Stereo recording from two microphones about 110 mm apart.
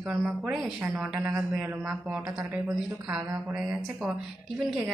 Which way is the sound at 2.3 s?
30° right (ahead or behind).